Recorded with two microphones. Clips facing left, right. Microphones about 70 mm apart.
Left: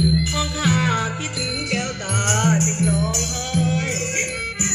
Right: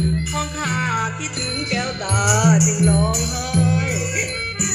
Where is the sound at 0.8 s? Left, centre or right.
Centre.